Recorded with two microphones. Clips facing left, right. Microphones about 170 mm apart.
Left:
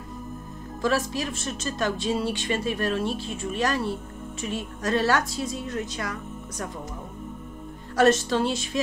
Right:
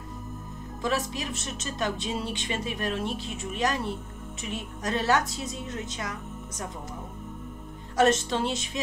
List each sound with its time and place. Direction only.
0.8 s speech: 20° right (ahead or behind)
7.9 s speech: 20° right (ahead or behind)